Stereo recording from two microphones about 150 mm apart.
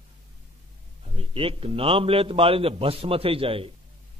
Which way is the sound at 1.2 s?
40° right (ahead or behind).